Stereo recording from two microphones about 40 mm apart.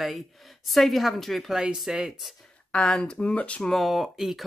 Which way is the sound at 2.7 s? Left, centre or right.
Left.